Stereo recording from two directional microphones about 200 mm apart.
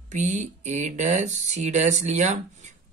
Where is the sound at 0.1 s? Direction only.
35° right (ahead or behind).